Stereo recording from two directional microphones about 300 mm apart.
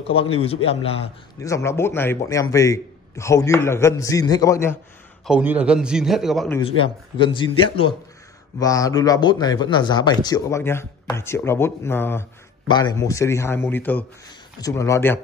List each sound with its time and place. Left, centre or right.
0.0 s speech: centre
5.2 s a man's voice: centre
6.8 s speech: centre